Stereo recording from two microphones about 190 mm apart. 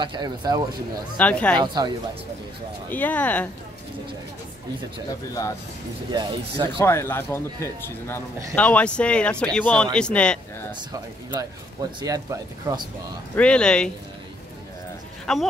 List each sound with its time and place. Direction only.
0.0 s speech: 25° right (ahead or behind)
1.1 s speech: 5° left (ahead or behind)
1.6 s speech: 25° right (ahead or behind)
2.9 s speech: 10° left (ahead or behind)
6.1 s speech: 25° right (ahead or behind)
6.8 s speech: 15° left (ahead or behind)
10.9 s speech: 20° right (ahead or behind)
13.4 s speech: 5° left (ahead or behind)
15.3 s speech: centre (ahead or behind)